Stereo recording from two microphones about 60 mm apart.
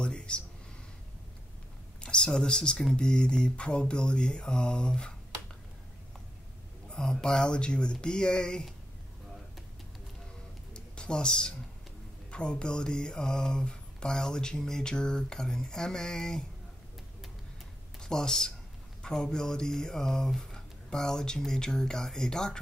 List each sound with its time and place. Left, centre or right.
0.0 s a sound: centre
2.0 s mantra: centre
6.9 s mantra: centre
10.7 s music: centre
12.3 s mantra: centre
18.0 s speech: centre
21.4 s mantra: centre